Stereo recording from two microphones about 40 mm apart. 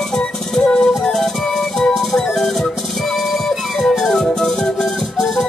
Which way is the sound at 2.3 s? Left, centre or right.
Centre.